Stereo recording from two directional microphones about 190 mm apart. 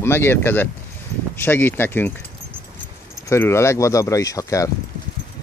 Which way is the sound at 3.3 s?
15° left (ahead or behind).